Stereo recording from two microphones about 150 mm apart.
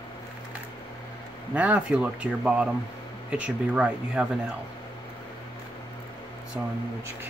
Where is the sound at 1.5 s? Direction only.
10° right (ahead or behind).